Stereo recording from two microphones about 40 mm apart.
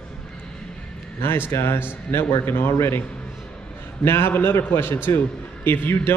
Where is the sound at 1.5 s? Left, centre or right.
Left.